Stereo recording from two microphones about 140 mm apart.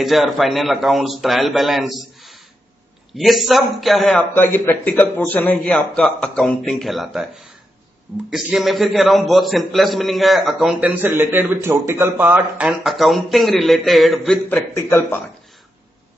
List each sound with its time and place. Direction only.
0.0 s a man's voice: centre (ahead or behind)
4.2 s a man's voice: 15° left (ahead or behind)
14.5 s a man's voice: 15° left (ahead or behind)